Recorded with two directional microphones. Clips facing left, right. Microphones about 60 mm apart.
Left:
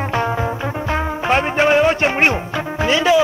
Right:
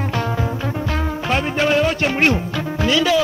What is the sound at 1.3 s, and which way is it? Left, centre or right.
Music, left.